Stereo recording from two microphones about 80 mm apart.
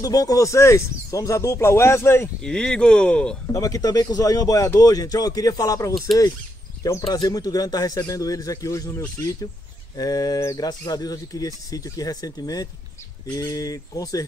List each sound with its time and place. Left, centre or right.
0.0 s speech: left
2.4 s speech: centre
3.5 s speech: left